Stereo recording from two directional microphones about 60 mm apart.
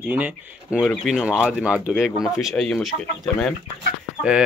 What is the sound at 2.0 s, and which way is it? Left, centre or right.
Speech, centre.